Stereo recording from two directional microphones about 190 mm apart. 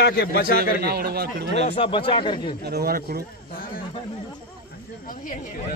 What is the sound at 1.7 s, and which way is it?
Speech, 25° left (ahead or behind).